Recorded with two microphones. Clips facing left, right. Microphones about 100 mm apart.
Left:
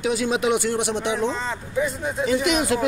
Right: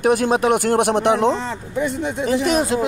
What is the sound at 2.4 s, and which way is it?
Speech, 35° right (ahead or behind).